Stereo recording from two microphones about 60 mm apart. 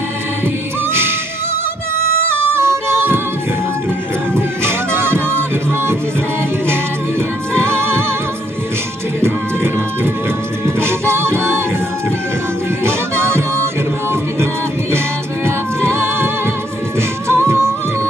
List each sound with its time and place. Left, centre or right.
2.2 s music: right
4.4 s music: right
7.6 s music: right
10.8 s music: right
12.8 s music: right
15.4 s music: right
17.3 s music: right